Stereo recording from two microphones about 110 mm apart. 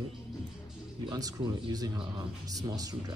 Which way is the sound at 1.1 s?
35° right (ahead or behind).